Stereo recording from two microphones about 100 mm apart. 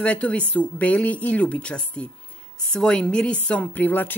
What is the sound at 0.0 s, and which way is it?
Speech, 10° left (ahead or behind).